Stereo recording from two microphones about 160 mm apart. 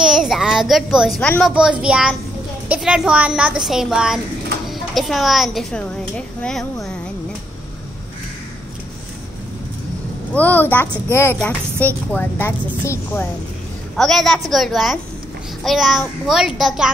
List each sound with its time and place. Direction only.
0.0 s child singing: 5° right (ahead or behind)
1.4 s a woman's voice: 5° right (ahead or behind)
10.3 s a woman's voice: 10° left (ahead or behind)
13.9 s a woman's voice: centre (ahead or behind)